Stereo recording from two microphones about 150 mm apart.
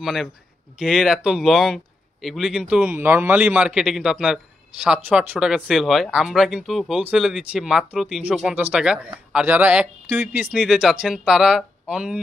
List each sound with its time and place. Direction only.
0.0 s speech: centre (ahead or behind)